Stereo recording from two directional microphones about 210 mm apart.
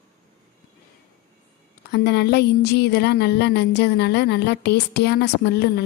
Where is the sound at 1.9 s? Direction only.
50° left (ahead or behind).